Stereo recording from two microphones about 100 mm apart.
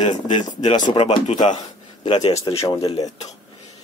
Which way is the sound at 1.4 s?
50° left (ahead or behind).